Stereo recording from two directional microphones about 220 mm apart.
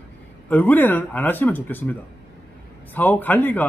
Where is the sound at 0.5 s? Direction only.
10° left (ahead or behind).